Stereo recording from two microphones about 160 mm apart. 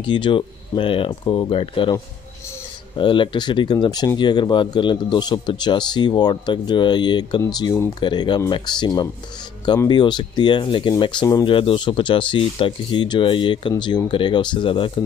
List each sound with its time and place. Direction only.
0.0 s speech: 30° left (ahead or behind)
3.0 s speech: 30° left (ahead or behind)